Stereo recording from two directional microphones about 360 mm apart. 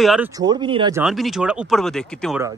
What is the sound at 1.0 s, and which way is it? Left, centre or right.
A man's voice, centre.